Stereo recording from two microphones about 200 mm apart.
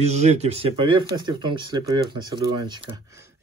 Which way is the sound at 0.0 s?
35° right (ahead or behind).